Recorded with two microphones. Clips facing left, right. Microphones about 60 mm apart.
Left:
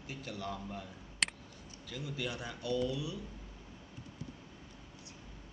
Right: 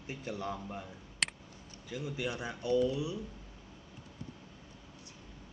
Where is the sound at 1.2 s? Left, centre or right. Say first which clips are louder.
Even; centre.